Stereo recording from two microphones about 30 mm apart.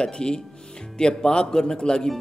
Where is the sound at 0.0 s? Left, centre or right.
Left.